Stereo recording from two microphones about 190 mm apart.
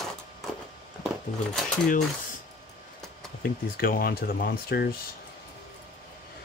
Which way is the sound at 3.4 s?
50° left (ahead or behind).